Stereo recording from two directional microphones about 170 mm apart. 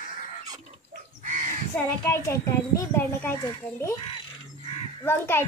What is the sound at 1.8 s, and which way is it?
A child's voice, 15° left (ahead or behind).